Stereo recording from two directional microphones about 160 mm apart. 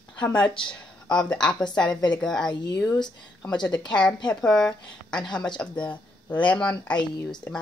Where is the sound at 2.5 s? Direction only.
25° left (ahead or behind).